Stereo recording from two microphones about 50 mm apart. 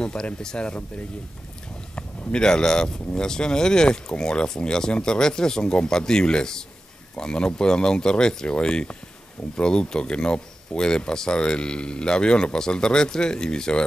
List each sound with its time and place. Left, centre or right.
0.0 s speech: centre
2.0 s a man's voice: centre